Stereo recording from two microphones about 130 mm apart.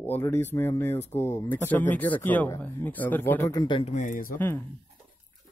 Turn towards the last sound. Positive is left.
turn(degrees=15)  # may be behind; listen again after turning